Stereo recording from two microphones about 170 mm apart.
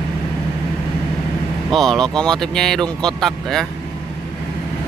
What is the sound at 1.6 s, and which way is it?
Speech, centre (ahead or behind).